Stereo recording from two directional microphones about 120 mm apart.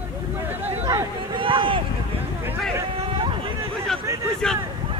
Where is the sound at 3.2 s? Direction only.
45° right (ahead or behind).